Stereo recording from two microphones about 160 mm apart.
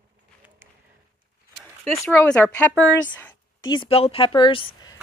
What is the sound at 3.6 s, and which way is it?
Speech, 30° left (ahead or behind).